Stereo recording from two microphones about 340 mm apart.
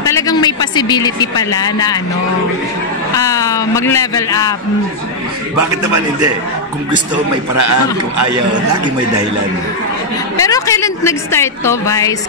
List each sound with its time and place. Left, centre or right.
0.0 s speech: centre
3.2 s a woman's voice: centre
7.5 s a man's voice: right
10.4 s a woman's voice: centre